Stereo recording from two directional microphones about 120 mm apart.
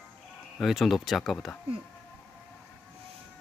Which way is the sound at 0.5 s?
Centre (ahead or behind).